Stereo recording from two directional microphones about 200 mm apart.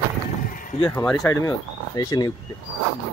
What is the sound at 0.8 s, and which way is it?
Speech, 5° left (ahead or behind).